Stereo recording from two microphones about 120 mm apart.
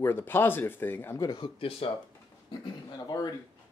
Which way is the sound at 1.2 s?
40° left (ahead or behind).